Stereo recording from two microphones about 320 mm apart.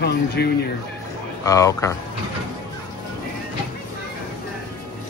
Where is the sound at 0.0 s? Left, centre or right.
Left.